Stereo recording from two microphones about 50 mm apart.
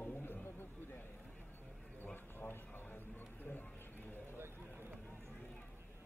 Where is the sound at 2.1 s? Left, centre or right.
Left.